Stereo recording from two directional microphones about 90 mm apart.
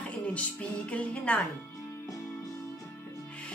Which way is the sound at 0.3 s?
15° left (ahead or behind).